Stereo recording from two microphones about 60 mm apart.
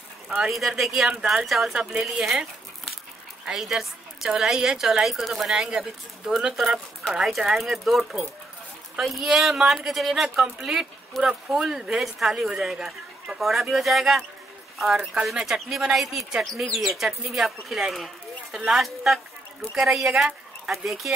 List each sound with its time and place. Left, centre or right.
0.4 s speech: centre
15.4 s a woman's voice: centre